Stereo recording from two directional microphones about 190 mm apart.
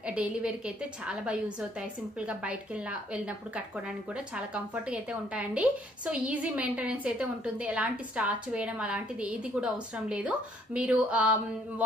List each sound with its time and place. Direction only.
0.0 s a woman's voice: 5° right (ahead or behind)